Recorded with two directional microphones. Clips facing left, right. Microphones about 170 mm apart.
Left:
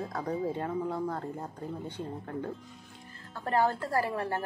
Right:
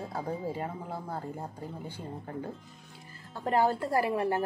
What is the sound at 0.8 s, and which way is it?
Speech, 30° right (ahead or behind).